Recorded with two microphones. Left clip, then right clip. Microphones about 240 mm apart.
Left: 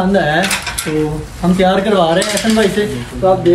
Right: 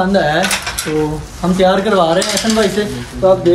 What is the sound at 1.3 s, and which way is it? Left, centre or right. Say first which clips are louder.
Speech: right 1 dB; centre.